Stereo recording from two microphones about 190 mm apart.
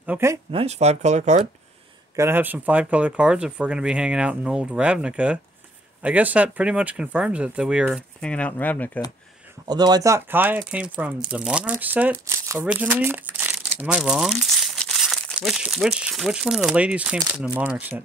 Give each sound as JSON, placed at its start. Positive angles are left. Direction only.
{"t": 0.0, "sound": "speech", "side_deg": -10}
{"t": 0.5, "sound": "speech", "side_deg": -30}
{"t": 2.1, "sound": "speech", "side_deg": -10}
{"t": 8.2, "sound": "speech", "side_deg": 5}
{"t": 9.7, "sound": "speech", "side_deg": -20}